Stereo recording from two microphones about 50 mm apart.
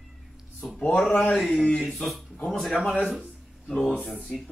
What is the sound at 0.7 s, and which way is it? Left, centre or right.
Speech, centre.